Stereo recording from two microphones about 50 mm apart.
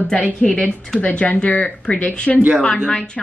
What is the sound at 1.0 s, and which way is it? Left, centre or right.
A woman's voice, left.